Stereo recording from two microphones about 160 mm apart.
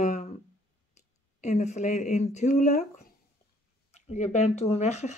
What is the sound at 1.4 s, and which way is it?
Speech, 45° left (ahead or behind).